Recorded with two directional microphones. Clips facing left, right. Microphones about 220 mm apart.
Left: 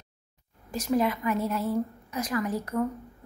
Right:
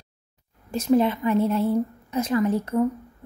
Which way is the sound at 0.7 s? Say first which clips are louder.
Right 6 dB; 25° right (ahead or behind).